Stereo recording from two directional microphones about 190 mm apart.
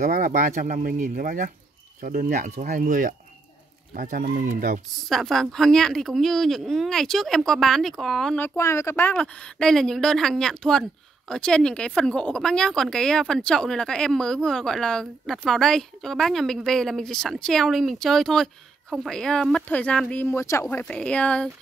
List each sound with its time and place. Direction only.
0.0 s speech: 45° right (ahead or behind)
4.9 s a woman's voice: centre (ahead or behind)
8.5 s a woman's voice: 15° left (ahead or behind)